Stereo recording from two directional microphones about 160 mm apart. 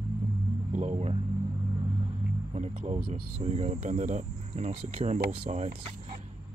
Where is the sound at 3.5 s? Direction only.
40° right (ahead or behind).